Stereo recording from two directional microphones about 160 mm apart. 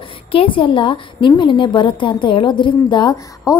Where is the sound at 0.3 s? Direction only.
35° left (ahead or behind).